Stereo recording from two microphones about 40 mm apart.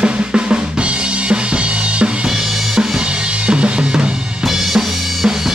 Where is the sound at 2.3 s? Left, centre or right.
Centre.